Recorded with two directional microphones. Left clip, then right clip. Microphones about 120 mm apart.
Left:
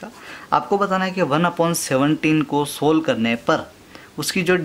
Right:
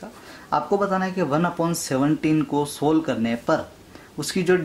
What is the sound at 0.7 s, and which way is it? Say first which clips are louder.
Speech: left 3 dB; 25° left (ahead or behind).